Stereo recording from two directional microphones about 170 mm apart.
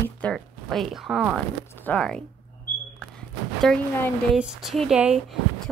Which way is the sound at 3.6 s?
5° left (ahead or behind).